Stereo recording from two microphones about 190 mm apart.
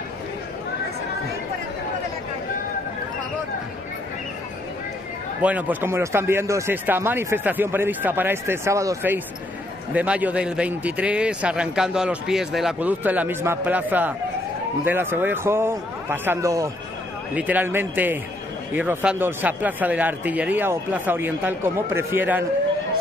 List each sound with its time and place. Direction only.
5.4 s a man's voice: 10° right (ahead or behind)